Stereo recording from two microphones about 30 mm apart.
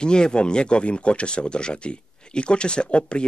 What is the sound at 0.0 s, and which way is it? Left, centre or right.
Speech, left.